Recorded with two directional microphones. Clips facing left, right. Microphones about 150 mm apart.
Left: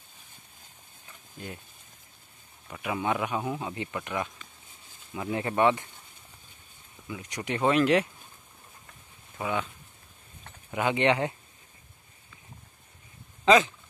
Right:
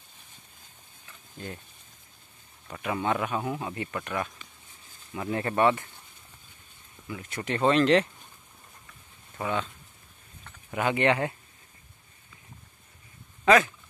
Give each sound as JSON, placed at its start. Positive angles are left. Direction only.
{"t": 2.7, "sound": "speech", "side_deg": 10}
{"t": 7.1, "sound": "speech", "side_deg": 15}
{"t": 9.4, "sound": "speech", "side_deg": 10}
{"t": 10.7, "sound": "speech", "side_deg": 20}